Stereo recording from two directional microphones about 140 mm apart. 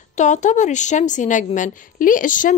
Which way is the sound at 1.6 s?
75° left (ahead or behind).